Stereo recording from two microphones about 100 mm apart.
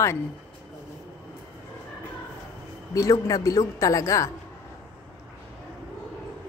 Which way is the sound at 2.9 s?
35° left (ahead or behind).